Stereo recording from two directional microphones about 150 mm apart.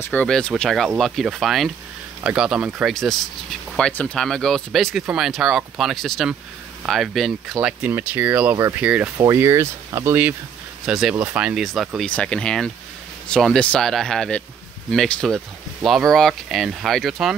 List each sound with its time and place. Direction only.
0.0 s speech: 10° left (ahead or behind); by 9.1 s 10° right (ahead or behind)
9.2 s speech: 20° right (ahead or behind)
10.9 s speech: 5° right (ahead or behind)